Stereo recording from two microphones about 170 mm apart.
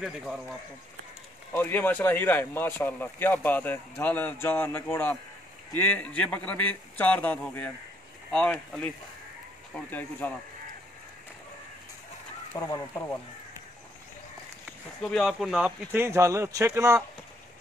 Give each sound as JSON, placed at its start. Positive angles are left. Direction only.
{"t": 0.0, "sound": "speech", "side_deg": -5}
{"t": 1.5, "sound": "speech", "side_deg": 10}
{"t": 12.5, "sound": "speech", "side_deg": 20}
{"t": 15.0, "sound": "speech", "side_deg": 5}